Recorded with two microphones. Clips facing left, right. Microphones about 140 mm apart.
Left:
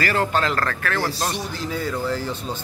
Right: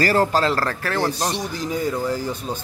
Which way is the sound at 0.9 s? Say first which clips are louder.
Right 4 dB; 20° right (ahead or behind).